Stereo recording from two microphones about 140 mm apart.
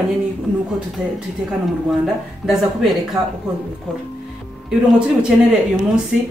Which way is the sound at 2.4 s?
Centre (ahead or behind).